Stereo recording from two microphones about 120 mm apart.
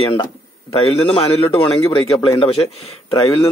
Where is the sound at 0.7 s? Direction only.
55° left (ahead or behind).